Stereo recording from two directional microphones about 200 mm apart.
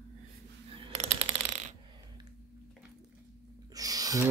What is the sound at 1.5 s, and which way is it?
Coin, 35° right (ahead or behind).